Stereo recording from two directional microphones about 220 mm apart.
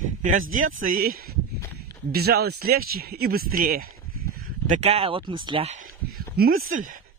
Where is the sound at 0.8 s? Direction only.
40° right (ahead or behind).